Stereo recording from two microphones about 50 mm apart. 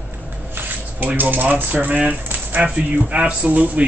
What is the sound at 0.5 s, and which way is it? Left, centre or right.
Speech, right.